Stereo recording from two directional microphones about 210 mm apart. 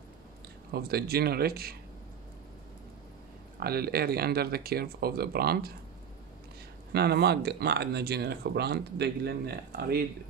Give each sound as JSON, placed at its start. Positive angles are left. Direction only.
{"t": 0.7, "sound": "speech", "side_deg": -50}
{"t": 3.5, "sound": "speech", "side_deg": -45}
{"t": 6.9, "sound": "speech", "side_deg": -50}